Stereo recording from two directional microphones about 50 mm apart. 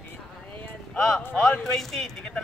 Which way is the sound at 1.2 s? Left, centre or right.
Left.